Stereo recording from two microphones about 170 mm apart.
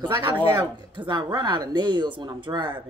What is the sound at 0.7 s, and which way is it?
Speech, 25° right (ahead or behind).